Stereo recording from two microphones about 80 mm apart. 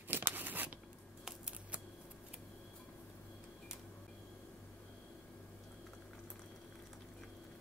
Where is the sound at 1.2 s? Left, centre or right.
Centre.